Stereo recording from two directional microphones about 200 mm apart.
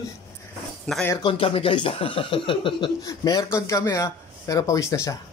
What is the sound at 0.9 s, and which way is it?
Speech, 5° left (ahead or behind).